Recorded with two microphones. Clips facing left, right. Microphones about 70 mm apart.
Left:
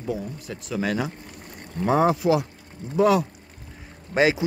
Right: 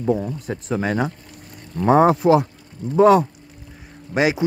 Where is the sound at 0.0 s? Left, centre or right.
Right.